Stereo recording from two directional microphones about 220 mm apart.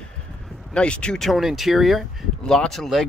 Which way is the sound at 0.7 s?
5° left (ahead or behind).